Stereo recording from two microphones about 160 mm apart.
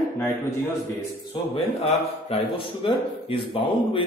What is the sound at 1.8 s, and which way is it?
Speech, 40° left (ahead or behind).